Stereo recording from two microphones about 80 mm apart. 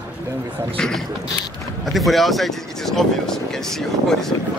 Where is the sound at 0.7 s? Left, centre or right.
Centre.